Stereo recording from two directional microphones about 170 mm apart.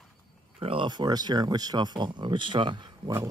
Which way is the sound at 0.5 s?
30° right (ahead or behind).